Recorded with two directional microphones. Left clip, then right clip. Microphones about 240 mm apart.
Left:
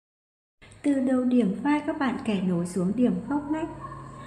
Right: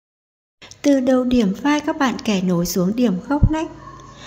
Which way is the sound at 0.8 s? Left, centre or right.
Right.